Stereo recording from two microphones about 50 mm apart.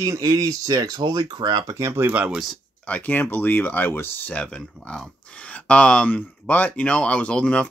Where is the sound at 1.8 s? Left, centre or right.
Right.